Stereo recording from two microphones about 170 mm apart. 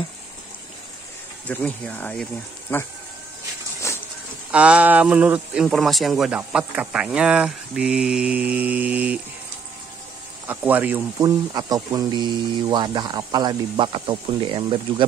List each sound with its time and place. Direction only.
1.5 s speech: 10° left (ahead or behind)
4.5 s speech: 5° right (ahead or behind)
10.5 s speech: 10° right (ahead or behind); by 15.0 s 30° right (ahead or behind)